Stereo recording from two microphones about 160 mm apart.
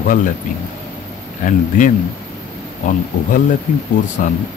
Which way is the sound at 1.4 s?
55° left (ahead or behind).